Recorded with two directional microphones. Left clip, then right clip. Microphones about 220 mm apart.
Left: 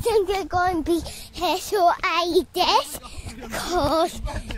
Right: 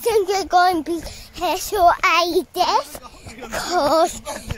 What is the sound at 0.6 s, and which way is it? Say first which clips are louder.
Speech: right 7 dB; 10° right (ahead or behind).